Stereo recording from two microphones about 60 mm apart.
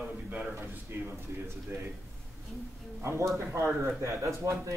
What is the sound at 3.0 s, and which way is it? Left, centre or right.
Speech, right.